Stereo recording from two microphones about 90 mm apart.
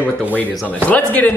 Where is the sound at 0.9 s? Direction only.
15° left (ahead or behind).